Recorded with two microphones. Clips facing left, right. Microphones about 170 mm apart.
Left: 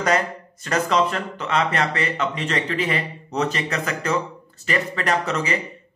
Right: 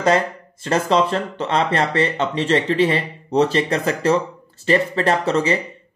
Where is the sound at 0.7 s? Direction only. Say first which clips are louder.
Right 3 dB; 30° right (ahead or behind).